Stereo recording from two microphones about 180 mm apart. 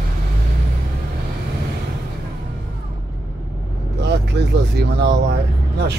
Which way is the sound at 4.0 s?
70° right (ahead or behind).